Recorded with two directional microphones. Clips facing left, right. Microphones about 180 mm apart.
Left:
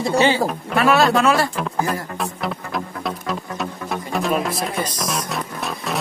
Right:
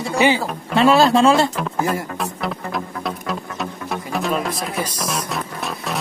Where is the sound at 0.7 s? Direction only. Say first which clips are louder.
Right 3 dB; 25° right (ahead or behind).